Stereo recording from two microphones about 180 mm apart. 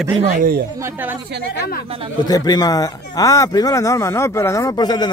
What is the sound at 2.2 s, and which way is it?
Speech, 20° left (ahead or behind).